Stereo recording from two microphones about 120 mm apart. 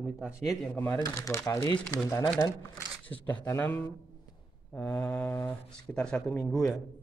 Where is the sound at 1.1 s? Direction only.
25° left (ahead or behind).